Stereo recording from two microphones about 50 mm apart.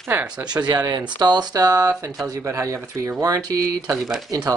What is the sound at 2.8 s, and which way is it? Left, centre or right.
Speech, right.